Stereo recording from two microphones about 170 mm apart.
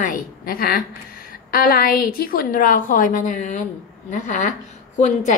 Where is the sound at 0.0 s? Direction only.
55° left (ahead or behind).